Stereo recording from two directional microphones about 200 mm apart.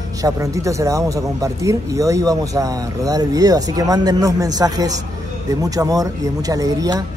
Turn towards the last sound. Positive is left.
turn(degrees=-20)  # may be behind; listen again after turning